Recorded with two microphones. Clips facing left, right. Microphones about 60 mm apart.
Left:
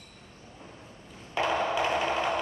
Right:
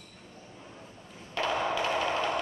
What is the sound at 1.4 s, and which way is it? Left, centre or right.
Wood block, centre.